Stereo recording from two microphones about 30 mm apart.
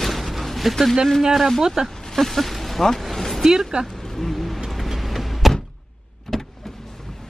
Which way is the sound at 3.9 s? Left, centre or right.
Centre.